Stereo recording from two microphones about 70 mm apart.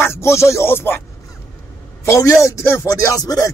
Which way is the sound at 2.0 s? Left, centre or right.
Left.